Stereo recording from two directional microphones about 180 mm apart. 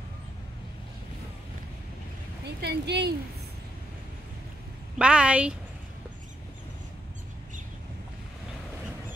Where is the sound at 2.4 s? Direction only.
65° right (ahead or behind).